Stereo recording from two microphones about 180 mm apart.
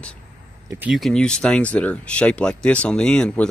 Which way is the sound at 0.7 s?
5° right (ahead or behind).